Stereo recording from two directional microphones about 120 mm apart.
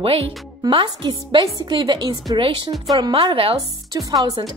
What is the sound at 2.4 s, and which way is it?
A woman's voice, 45° right (ahead or behind).